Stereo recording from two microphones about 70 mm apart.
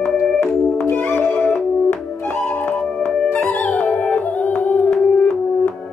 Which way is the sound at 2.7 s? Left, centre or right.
Left.